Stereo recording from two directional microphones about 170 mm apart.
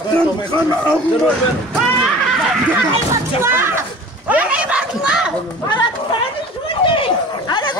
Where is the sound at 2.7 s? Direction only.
15° right (ahead or behind).